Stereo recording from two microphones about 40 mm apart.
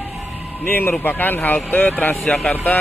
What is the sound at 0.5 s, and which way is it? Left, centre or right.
Speech, left.